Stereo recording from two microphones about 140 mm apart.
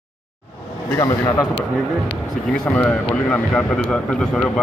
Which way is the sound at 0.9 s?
25° left (ahead or behind).